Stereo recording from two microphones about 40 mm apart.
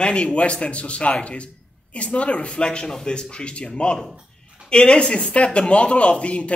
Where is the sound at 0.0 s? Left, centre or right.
Left.